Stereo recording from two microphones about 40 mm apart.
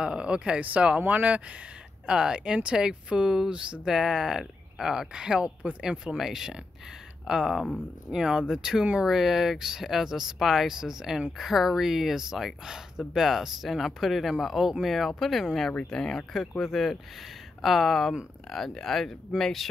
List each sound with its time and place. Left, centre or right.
0.0 s speech: right
0.6 s speech: right
1.0 s speech: right
2.0 s speech: centre
3.9 s speech: centre
6.1 s speech: centre
15.9 s speech: centre
16.3 s speech: centre